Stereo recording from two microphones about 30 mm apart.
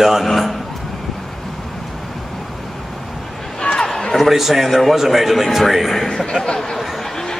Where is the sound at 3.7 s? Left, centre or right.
Left.